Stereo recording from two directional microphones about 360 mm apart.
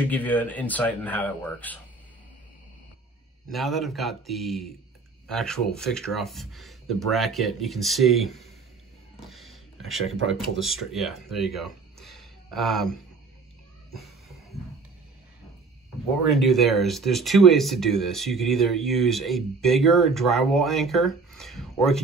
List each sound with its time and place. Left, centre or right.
0.1 s speech: centre
3.4 s speech: centre
9.3 s a sound: centre
10.1 s speech: right
10.6 s speech: centre
16.1 s speech: centre